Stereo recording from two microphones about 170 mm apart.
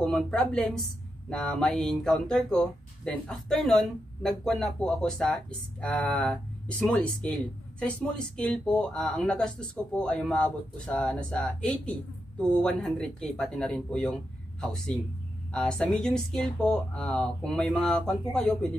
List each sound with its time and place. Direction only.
0.0 s speech: 5° left (ahead or behind)